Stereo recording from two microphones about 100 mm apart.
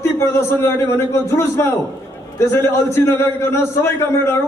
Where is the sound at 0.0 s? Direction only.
25° left (ahead or behind).